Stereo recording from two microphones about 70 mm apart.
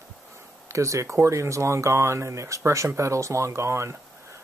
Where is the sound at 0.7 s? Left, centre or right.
Right.